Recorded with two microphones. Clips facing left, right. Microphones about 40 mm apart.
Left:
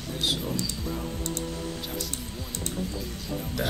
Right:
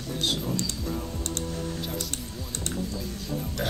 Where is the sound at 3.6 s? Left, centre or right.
Left.